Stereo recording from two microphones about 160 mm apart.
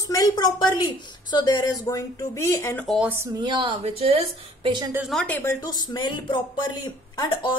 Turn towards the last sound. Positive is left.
turn(degrees=25)  # may be behind; listen again after turning